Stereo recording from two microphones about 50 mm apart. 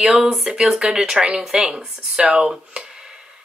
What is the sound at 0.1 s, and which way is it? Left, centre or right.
A woman's voice, centre.